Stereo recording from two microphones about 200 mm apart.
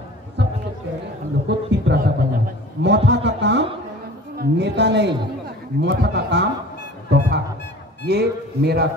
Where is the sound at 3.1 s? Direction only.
60° right (ahead or behind).